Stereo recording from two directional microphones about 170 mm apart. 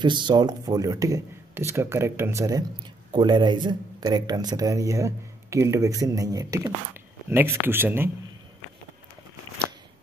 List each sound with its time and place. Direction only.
0.0 s speech: 25° right (ahead or behind)